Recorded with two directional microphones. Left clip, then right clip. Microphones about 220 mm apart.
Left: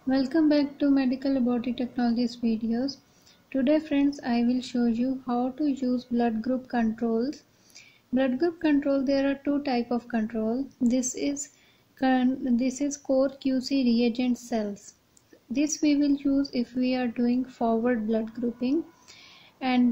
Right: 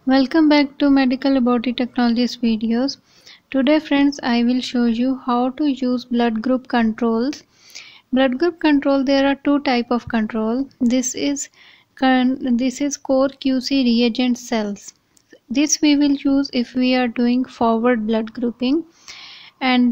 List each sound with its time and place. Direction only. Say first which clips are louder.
0.1 s speech: right 9 dB; 25° right (ahead or behind)